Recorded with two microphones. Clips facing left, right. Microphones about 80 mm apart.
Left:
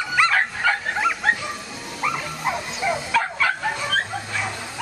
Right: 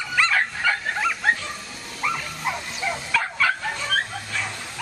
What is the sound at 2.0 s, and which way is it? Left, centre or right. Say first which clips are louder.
Bow-wow: left 2 dB; centre.